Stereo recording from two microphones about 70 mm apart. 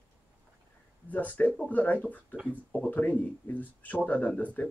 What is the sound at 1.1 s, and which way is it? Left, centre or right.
Speech, left.